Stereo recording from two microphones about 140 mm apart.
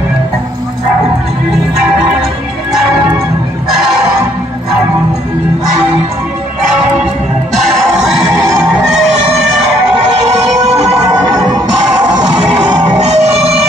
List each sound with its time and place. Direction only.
11.2 s music: 25° right (ahead or behind)
12.6 s music: 30° right (ahead or behind)
13.0 s music: 50° right (ahead or behind)